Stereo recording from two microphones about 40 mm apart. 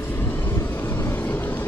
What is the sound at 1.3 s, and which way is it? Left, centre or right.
Vehicle, left.